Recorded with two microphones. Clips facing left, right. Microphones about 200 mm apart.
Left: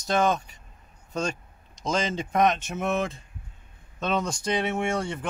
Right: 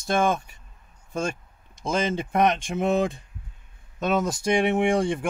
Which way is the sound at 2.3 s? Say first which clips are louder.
Right 1 dB; 15° right (ahead or behind).